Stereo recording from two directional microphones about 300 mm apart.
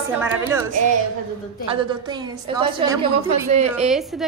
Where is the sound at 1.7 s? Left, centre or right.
Centre.